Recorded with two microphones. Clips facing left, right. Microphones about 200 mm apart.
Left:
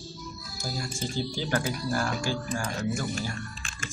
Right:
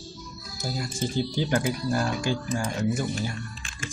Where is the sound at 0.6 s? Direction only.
20° right (ahead or behind).